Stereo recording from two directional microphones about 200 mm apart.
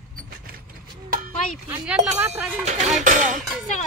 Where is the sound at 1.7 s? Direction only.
10° right (ahead or behind).